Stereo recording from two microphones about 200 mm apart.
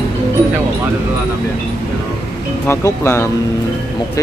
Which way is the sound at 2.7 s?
15° left (ahead or behind).